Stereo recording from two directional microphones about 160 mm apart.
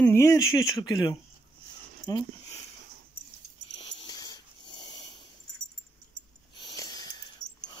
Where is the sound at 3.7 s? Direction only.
25° left (ahead or behind).